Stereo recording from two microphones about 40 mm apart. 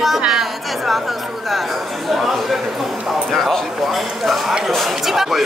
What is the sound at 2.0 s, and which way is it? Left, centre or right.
Speech, centre.